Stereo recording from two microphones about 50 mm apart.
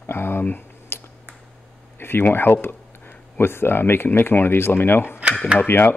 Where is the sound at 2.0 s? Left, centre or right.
Left.